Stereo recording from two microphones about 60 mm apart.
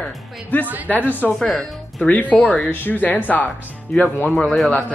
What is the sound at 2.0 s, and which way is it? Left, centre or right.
Speech, left.